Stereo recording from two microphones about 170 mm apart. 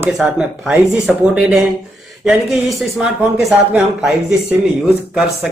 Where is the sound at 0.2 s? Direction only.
5° right (ahead or behind).